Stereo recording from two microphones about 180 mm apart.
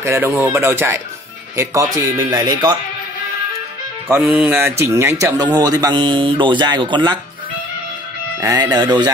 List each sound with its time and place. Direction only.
0.0 s speech: 15° right (ahead or behind)
4.1 s a man's voice: 15° right (ahead or behind)
8.4 s a man's voice: 20° right (ahead or behind)